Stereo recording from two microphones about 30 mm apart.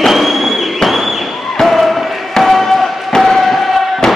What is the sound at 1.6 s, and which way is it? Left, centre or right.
Basketball bounce, centre.